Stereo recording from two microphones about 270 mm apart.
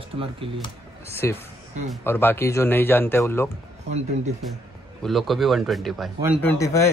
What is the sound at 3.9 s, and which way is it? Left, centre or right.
Speech, right.